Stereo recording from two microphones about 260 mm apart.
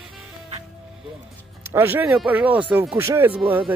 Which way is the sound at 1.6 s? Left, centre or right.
Centre.